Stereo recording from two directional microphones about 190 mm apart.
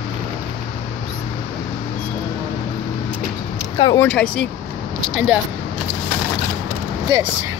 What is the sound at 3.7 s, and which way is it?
Speech, 25° left (ahead or behind).